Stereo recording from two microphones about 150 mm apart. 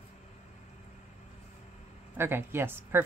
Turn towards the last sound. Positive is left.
turn(degrees=-15)  # may be behind; listen again after turning